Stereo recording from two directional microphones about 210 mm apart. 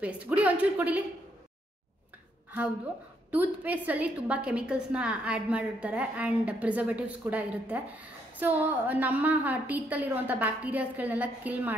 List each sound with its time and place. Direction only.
0.0 s a woman's voice: 5° right (ahead or behind)
3.3 s a woman's voice: 10° right (ahead or behind)